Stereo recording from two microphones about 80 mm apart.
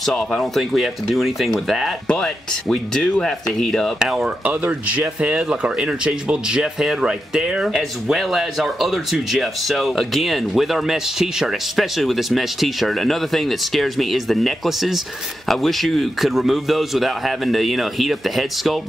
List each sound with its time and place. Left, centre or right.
0.0 s speech: centre
4.0 s speech: centre